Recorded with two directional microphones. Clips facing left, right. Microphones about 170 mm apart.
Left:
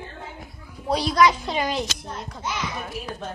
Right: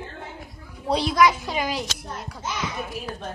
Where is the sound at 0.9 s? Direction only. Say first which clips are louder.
Even; 25° right (ahead or behind).